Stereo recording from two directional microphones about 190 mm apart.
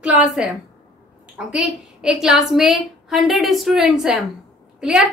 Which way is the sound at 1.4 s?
5° right (ahead or behind).